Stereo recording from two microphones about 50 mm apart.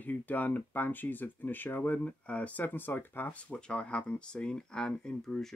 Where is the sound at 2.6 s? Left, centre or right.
Left.